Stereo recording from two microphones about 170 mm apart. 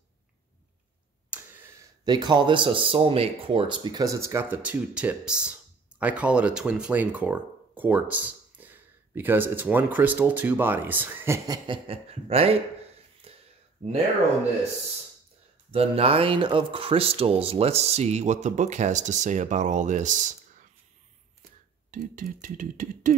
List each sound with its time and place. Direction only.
1.3 s a sound: 10° right (ahead or behind)
2.0 s speech: 25° right (ahead or behind)
15.7 s speech: 35° right (ahead or behind)
21.9 s speech: 50° right (ahead or behind)